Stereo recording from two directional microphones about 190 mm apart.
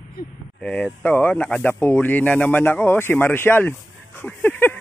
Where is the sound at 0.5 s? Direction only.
5° left (ahead or behind).